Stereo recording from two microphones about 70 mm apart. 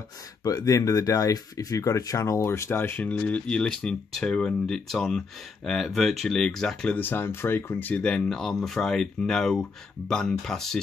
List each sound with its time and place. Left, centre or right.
0.4 s speech: left
2.4 s speech: left
3.0 s speech: left
7.0 s speech: left
7.9 s speech: centre